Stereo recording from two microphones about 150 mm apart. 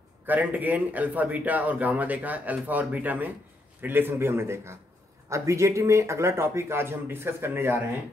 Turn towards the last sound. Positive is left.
turn(degrees=-15)  # may be behind; listen again after turning